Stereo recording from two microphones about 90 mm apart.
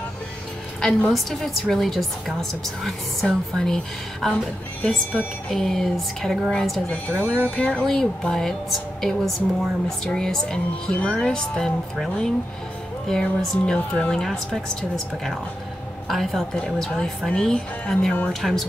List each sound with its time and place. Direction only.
0.7 s a woman's voice: 5° left (ahead or behind)
4.8 s speech: 15° left (ahead or behind)
5.5 s a woman's voice: 5° left (ahead or behind)
6.9 s a woman's voice: 15° left (ahead or behind)
13.1 s a woman's voice: 5° left (ahead or behind)